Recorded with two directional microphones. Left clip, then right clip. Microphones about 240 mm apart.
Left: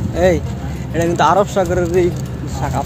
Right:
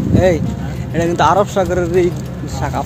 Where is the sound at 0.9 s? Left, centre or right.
Centre.